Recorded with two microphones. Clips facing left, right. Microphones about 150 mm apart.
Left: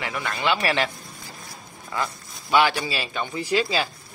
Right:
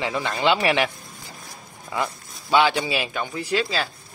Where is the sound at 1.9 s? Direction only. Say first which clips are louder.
Right 2 dB; 20° right (ahead or behind).